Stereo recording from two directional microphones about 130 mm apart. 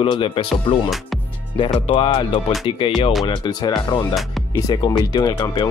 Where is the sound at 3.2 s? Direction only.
30° left (ahead or behind).